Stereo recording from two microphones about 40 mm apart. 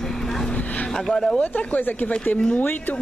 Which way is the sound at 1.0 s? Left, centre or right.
Centre.